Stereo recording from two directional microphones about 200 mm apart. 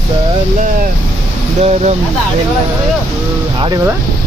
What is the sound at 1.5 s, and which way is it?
Speech, 35° right (ahead or behind).